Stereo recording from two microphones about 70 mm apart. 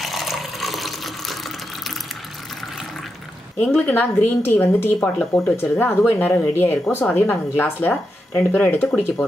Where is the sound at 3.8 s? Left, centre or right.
Left.